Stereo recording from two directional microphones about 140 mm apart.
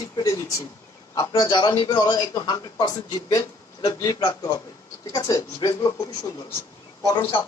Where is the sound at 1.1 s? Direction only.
30° left (ahead or behind).